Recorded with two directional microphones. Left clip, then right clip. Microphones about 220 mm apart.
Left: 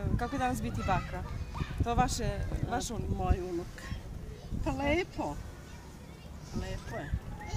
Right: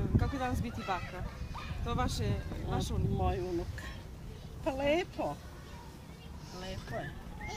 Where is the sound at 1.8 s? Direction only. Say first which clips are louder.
Left 5 dB; 40° left (ahead or behind).